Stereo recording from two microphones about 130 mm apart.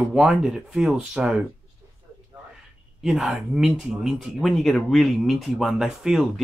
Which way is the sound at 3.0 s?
5° right (ahead or behind).